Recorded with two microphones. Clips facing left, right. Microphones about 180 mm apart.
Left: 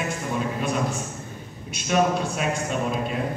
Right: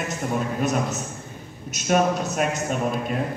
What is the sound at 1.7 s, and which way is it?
Speech, 45° right (ahead or behind).